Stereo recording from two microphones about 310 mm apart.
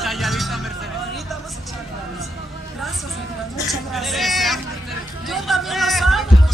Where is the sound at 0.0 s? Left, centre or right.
Centre.